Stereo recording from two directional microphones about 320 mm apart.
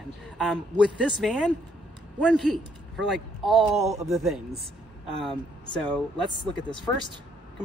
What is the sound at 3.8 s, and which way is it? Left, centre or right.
Speech, centre.